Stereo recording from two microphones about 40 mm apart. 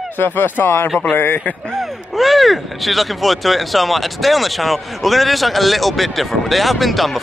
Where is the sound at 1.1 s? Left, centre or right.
Left.